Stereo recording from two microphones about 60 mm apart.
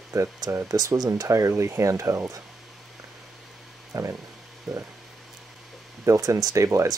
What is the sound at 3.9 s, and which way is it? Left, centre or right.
Speech, right.